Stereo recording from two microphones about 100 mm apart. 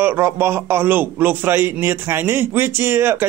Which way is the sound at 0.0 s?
20° right (ahead or behind).